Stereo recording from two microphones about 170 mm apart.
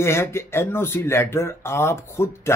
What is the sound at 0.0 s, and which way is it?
Speech, 15° left (ahead or behind).